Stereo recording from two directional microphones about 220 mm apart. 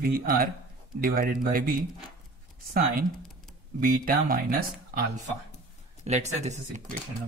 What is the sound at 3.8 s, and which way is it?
Speech, 40° right (ahead or behind).